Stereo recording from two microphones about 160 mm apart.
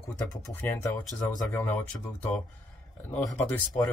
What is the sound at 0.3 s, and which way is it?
Speech, 15° left (ahead or behind).